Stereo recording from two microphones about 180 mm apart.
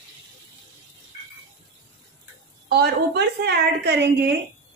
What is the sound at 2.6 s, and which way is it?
A woman's voice, 60° right (ahead or behind).